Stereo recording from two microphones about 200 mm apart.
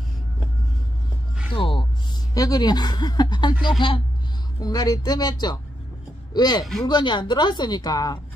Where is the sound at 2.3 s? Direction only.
20° left (ahead or behind).